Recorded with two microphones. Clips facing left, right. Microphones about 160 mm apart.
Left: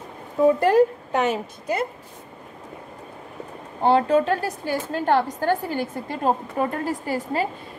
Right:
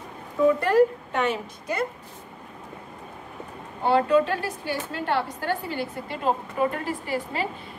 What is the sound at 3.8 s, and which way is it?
A woman's voice, 30° left (ahead or behind).